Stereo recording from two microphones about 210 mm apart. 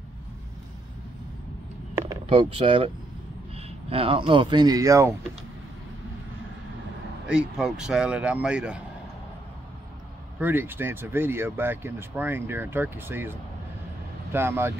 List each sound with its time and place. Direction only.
2.2 s speech: 25° right (ahead or behind)
7.2 s speech: 5° right (ahead or behind)
10.4 s speech: 10° right (ahead or behind)
14.3 s speech: 10° right (ahead or behind)